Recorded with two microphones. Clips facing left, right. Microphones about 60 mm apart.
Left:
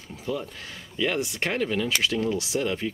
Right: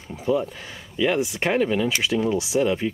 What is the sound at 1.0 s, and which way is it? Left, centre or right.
Speech, centre.